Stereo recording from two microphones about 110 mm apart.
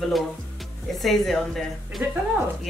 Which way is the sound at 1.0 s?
Centre (ahead or behind).